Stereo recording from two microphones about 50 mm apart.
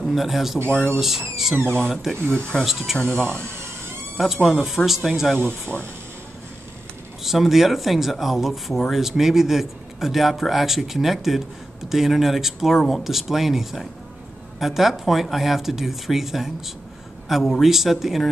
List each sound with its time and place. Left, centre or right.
0.0 s speech: centre
0.7 s speech: left
0.9 s speech: centre
2.2 s speech: left
2.6 s speech: centre
3.0 s speech: centre
4.2 s speech: centre
7.2 s speech: centre